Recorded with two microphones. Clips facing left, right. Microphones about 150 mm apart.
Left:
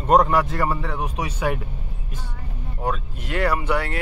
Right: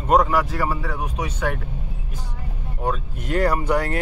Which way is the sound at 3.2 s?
40° right (ahead or behind).